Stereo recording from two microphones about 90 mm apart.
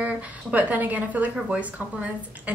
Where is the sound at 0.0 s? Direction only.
15° right (ahead or behind).